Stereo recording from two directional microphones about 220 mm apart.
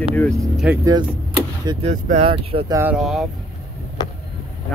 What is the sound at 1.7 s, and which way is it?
Speech, 30° right (ahead or behind).